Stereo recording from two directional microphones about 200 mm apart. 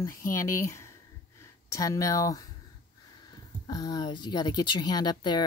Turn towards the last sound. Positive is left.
turn(degrees=20)  # may be behind; listen again after turning